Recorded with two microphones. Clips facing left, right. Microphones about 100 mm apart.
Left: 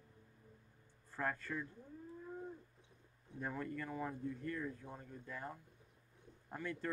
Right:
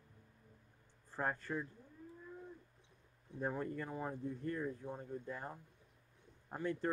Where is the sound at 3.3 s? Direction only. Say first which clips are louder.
Right 3 dB; 25° right (ahead or behind).